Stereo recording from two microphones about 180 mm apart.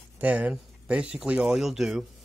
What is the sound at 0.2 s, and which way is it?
Speech, 10° right (ahead or behind).